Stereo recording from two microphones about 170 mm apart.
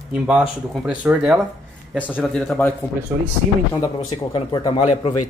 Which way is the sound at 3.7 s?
25° left (ahead or behind).